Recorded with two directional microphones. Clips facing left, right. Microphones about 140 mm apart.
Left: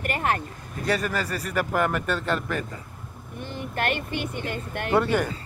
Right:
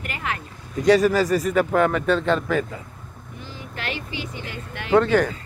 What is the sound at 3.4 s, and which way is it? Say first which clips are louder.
Speech: left 6 dB; 55° left (ahead or behind).